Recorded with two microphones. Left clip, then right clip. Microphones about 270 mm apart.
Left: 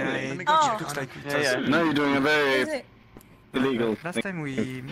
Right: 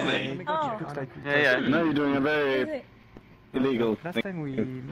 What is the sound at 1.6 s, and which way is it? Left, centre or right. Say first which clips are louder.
Speech: left 2 dB; left.